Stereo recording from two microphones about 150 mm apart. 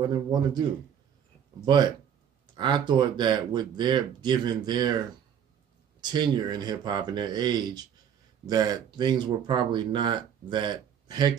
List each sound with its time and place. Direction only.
0.0 s speech: 30° right (ahead or behind)
2.5 s speech: 30° right (ahead or behind)
5.9 s speech: 30° right (ahead or behind)